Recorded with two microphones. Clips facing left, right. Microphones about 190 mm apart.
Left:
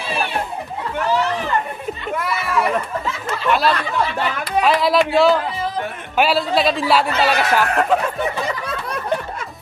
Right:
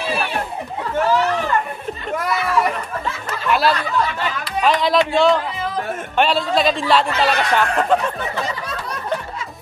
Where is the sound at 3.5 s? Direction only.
Centre (ahead or behind).